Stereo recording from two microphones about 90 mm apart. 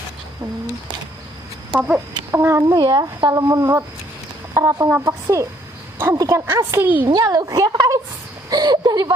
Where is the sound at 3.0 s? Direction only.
40° right (ahead or behind).